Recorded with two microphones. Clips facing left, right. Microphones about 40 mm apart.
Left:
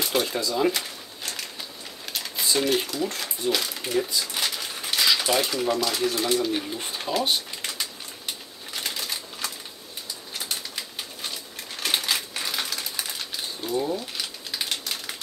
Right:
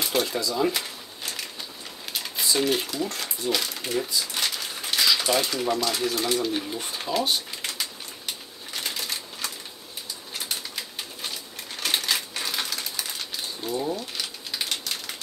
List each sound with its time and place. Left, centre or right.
0.4 s speech: centre
0.7 s a sound: centre
2.5 s speech: centre
3.2 s a sound: centre
5.0 s speech: centre
7.6 s pigeon: centre
10.3 s bird: centre
11.8 s typewriter: centre
12.9 s a sound: centre